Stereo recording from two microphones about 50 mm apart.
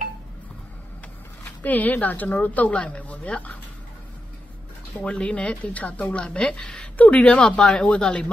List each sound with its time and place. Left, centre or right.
1.4 s speech: left
5.0 s speech: left
6.3 s speech: centre